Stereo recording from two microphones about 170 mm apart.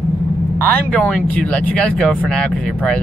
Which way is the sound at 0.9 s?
5° left (ahead or behind).